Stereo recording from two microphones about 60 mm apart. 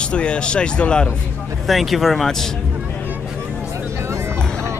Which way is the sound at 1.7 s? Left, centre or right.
Centre.